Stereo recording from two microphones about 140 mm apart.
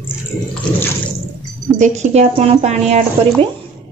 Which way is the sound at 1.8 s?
55° right (ahead or behind).